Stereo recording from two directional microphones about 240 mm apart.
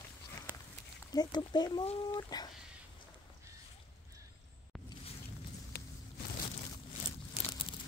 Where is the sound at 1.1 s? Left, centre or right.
Centre.